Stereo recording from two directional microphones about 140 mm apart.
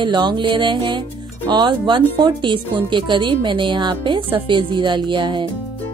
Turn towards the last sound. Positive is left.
turn(degrees=-35)  # may be behind; listen again after turning